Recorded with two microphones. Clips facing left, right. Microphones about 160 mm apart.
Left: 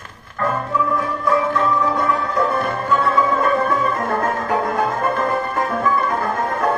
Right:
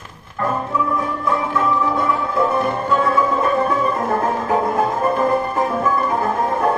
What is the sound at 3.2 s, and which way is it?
Music, 5° right (ahead or behind).